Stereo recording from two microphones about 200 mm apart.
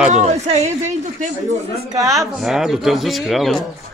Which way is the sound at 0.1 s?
35° right (ahead or behind).